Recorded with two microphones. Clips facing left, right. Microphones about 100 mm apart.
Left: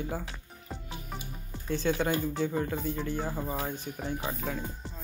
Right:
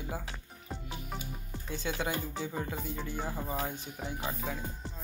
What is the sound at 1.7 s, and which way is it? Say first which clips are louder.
Speech: left 6 dB; 15° right (ahead or behind).